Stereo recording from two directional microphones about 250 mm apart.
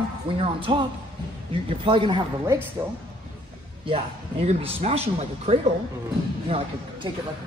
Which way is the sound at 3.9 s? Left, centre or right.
Right.